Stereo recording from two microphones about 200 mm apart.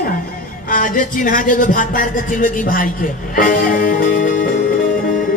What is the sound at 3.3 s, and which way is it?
Music, 45° left (ahead or behind).